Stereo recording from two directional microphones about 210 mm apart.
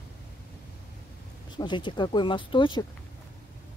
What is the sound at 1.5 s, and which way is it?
Speech, 20° left (ahead or behind).